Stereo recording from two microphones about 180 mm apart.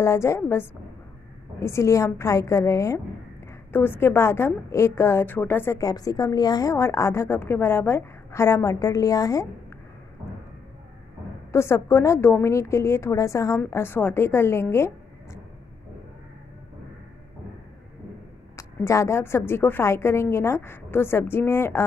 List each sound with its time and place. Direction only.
0.0 s a woman's voice: 15° left (ahead or behind)
11.5 s a woman's voice: 15° left (ahead or behind)
18.6 s a woman's voice: 15° left (ahead or behind)